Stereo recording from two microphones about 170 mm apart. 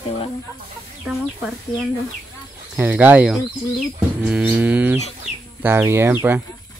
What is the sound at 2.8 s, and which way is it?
Speech, 10° right (ahead or behind).